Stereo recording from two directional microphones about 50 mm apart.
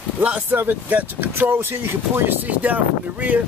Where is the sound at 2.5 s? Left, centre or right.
Right.